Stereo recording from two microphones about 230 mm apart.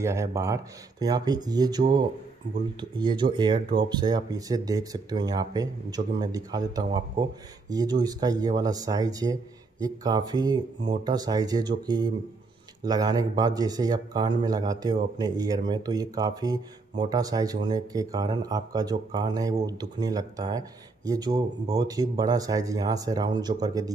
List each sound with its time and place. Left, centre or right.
0.0 s speech: centre